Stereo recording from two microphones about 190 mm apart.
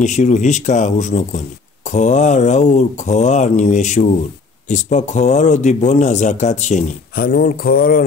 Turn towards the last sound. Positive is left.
turn(degrees=50)  # may be behind; listen again after turning